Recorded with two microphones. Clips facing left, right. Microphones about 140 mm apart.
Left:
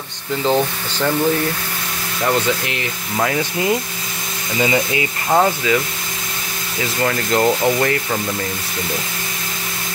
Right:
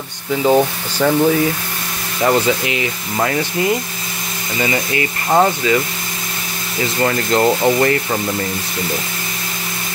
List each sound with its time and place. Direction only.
0.4 s speech: 10° right (ahead or behind)
4.6 s speech: 15° left (ahead or behind)
5.3 s speech: centre (ahead or behind)
7.0 s speech: 5° right (ahead or behind)